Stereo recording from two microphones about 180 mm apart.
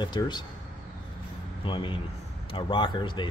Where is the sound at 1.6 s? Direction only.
30° left (ahead or behind).